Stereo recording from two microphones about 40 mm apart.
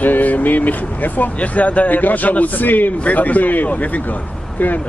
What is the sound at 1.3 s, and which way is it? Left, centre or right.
Speech, left.